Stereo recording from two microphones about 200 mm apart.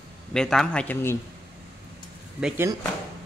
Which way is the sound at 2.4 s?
5° right (ahead or behind).